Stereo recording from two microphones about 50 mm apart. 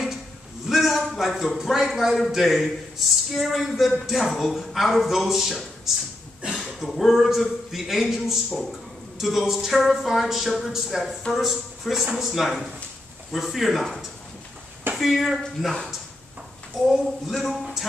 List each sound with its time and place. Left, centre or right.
0.7 s a man's voice: centre
6.4 s a sound: right
6.8 s speech: centre
12.0 s a man's voice: centre
12.4 s speech: centre
17.3 s speech: centre